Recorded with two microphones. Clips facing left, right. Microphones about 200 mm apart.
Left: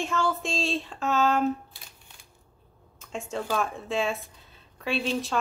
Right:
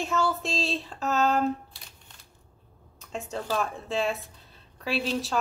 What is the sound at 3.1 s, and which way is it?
A woman's voice, centre (ahead or behind).